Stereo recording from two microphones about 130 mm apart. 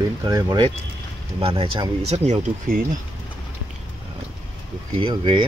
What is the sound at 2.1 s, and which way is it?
Speech, 60° right (ahead or behind).